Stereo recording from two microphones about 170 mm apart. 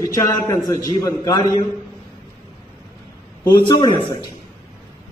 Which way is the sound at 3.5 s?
25° left (ahead or behind).